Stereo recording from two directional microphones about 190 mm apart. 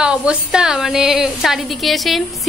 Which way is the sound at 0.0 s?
5° right (ahead or behind).